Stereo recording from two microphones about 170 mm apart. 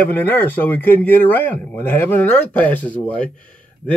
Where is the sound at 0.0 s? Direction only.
10° left (ahead or behind).